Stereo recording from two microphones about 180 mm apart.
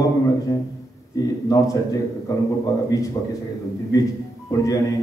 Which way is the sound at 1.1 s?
20° left (ahead or behind).